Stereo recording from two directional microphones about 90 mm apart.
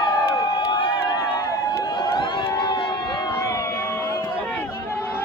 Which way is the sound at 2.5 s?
55° left (ahead or behind).